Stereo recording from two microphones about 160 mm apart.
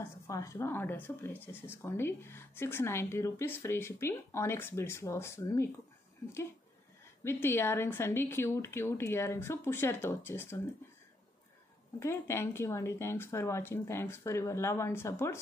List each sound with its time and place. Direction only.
0.0 s speech: 20° left (ahead or behind)
7.2 s speech: 15° left (ahead or behind)
12.0 s speech: 15° left (ahead or behind)